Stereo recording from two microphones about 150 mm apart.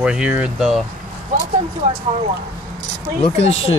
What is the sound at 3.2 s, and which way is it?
Speech, 40° left (ahead or behind).